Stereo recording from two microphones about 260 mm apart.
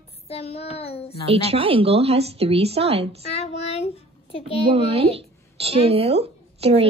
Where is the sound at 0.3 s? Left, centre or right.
Left.